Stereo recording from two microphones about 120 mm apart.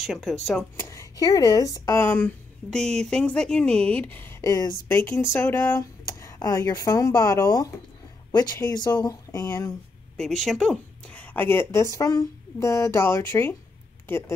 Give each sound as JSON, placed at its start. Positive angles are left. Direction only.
{"t": 0.0, "sound": "speech", "side_deg": 0}
{"t": 0.7, "sound": "a woman's voice", "side_deg": 25}
{"t": 10.1, "sound": "a woman's voice", "side_deg": 5}